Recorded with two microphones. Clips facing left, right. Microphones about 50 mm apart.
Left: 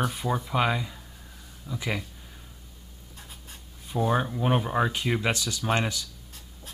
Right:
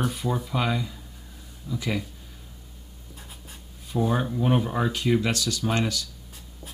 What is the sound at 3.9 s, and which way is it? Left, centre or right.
Speech, centre.